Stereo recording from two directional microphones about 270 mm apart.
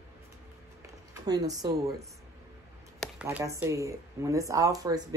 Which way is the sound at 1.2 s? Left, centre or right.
Centre.